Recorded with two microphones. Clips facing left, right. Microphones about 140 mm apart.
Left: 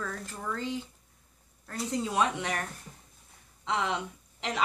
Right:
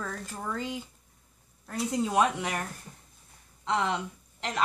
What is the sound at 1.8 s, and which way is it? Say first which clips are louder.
Speech: right 3 dB; 5° right (ahead or behind).